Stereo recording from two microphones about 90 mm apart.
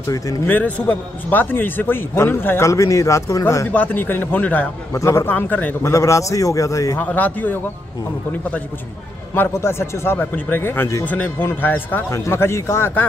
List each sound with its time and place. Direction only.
0.5 s a man's voice: 15° left (ahead or behind); by 3.6 s 35° left (ahead or behind)
3.7 s a man's voice: 20° left (ahead or behind)
4.9 s a man's voice: 30° left (ahead or behind)
5.3 s a man's voice: 20° left (ahead or behind)
5.8 s a man's voice: 35° left (ahead or behind)
7.0 s a man's voice: 20° left (ahead or behind)